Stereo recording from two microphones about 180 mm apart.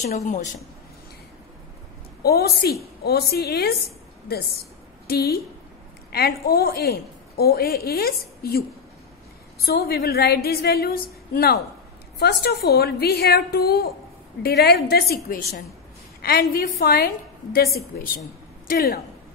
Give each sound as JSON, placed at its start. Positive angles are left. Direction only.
{"t": 0.0, "sound": "a woman's voice", "side_deg": 40}
{"t": 2.2, "sound": "a woman's voice", "side_deg": 60}
{"t": 5.0, "sound": "a woman's voice", "side_deg": 60}
{"t": 9.7, "sound": "a woman's voice", "side_deg": 60}